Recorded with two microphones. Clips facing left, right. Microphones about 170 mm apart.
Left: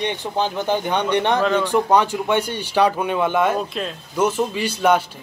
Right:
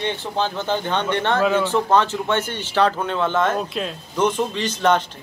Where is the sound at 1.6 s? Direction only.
15° left (ahead or behind).